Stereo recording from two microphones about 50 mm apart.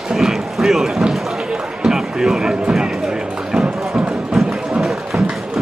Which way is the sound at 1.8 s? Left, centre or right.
Centre.